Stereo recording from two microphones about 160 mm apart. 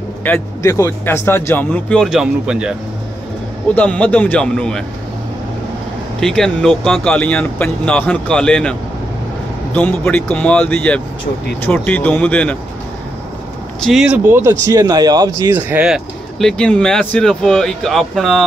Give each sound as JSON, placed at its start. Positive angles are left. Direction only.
{"t": 0.2, "sound": "speech", "side_deg": 15}
{"t": 3.7, "sound": "speech", "side_deg": 10}
{"t": 6.2, "sound": "speech", "side_deg": 5}
{"t": 9.8, "sound": "speech", "side_deg": 10}
{"t": 13.8, "sound": "speech", "side_deg": -5}
{"t": 15.7, "sound": "speech", "side_deg": -5}